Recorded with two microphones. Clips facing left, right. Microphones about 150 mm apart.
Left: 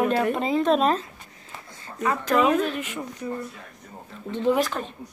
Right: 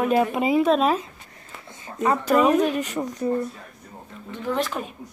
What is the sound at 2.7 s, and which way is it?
Speech, 40° right (ahead or behind).